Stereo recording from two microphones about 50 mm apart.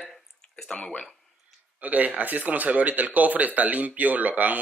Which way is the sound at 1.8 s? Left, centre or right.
Right.